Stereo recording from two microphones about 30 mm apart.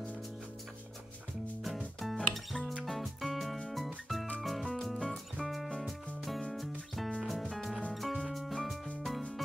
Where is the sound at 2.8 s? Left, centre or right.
Centre.